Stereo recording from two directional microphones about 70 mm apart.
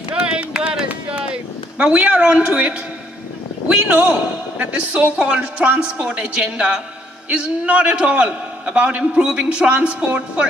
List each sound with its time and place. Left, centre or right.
0.1 s run: centre
3.6 s a man's voice: centre